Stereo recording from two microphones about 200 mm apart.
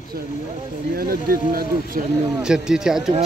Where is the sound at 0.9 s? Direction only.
50° right (ahead or behind).